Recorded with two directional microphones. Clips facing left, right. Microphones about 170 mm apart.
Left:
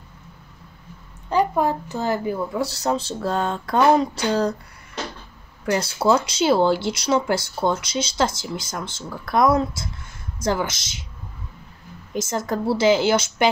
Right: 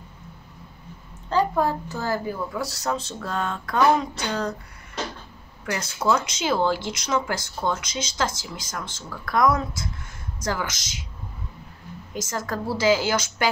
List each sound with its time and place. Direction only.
1.3 s speech: 20° left (ahead or behind); by 4.6 s 35° left (ahead or behind)
5.7 s speech: 30° left (ahead or behind)
12.1 s speech: 25° left (ahead or behind)